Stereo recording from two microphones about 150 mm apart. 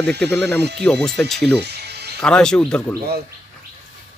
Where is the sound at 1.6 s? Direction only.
90° right.